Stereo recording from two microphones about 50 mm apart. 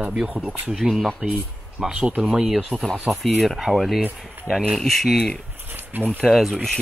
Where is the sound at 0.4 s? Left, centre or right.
Right.